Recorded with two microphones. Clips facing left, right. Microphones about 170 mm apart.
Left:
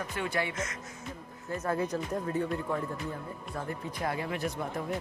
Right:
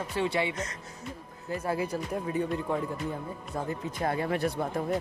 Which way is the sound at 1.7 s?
10° right (ahead or behind).